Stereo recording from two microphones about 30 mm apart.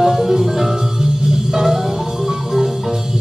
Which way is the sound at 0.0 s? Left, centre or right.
Centre.